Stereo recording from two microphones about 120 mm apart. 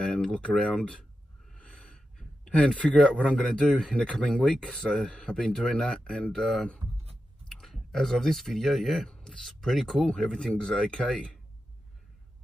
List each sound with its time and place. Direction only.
0.0 s speech: 5° left (ahead or behind)